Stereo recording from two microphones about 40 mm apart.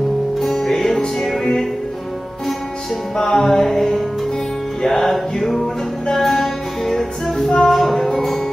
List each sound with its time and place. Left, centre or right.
0.4 s music: centre
3.2 s music: centre